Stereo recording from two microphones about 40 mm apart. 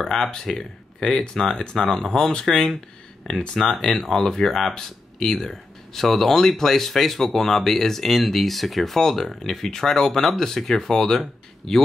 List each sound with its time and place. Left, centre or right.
0.0 s speech: centre